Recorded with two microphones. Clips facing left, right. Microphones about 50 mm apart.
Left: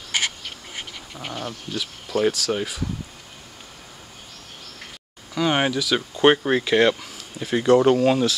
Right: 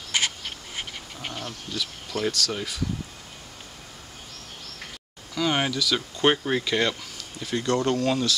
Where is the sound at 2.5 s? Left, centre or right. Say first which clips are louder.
Left 6 dB; centre.